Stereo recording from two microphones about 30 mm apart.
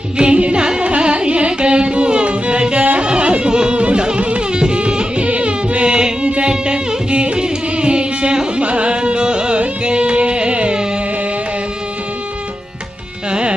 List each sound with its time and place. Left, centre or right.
0.2 s carnatic music: right
3.1 s music: right
3.7 s music: right
6.5 s music: right
13.3 s music: right